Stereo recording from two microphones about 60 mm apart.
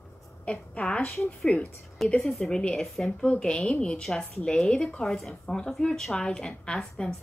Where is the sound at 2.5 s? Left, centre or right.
Centre.